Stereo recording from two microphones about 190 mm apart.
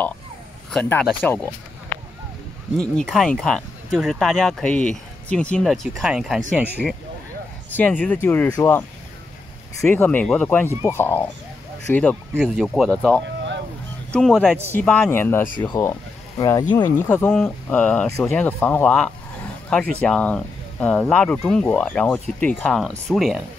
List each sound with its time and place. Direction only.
0.7 s speech: 5° left (ahead or behind)
2.8 s speech: centre (ahead or behind)
7.7 s speech: 10° left (ahead or behind)
10.7 s speech: 10° right (ahead or behind)
11.0 s speech: 10° left (ahead or behind)
17.1 s speech: 10° left (ahead or behind)